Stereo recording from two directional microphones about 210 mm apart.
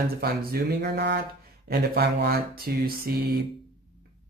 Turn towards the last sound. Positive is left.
turn(degrees=-45)  # may be behind; listen again after turning